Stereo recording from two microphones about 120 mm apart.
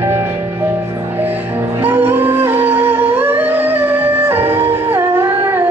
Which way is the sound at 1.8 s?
15° right (ahead or behind).